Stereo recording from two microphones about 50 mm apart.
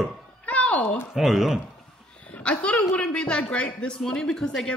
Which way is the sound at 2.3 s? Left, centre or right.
Left.